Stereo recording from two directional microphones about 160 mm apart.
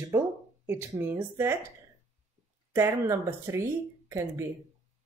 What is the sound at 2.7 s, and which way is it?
Speech, 15° right (ahead or behind).